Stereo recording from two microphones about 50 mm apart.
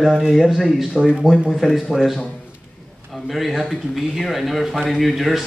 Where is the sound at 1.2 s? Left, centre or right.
Centre.